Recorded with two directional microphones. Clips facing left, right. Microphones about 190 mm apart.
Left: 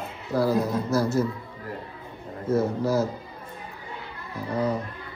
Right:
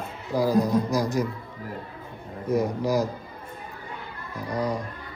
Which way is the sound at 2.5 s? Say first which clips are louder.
Even; 15° right (ahead or behind).